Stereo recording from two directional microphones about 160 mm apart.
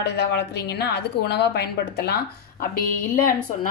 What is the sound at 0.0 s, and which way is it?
A woman's voice, 90° left.